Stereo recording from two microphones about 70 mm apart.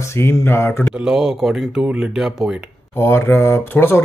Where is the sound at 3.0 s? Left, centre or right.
Left.